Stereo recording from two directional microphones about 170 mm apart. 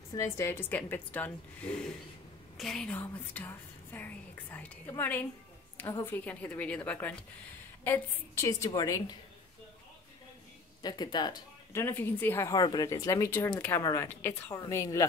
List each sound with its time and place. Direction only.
0.1 s speech: 15° left (ahead or behind)
10.8 s speech: 25° left (ahead or behind)